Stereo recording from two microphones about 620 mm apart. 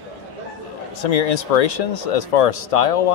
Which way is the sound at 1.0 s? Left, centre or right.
Left.